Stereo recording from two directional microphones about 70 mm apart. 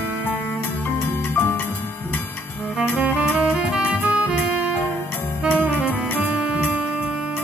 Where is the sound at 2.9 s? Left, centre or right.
Right.